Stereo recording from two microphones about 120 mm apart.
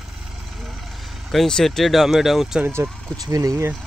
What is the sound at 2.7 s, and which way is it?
Speech, 25° right (ahead or behind).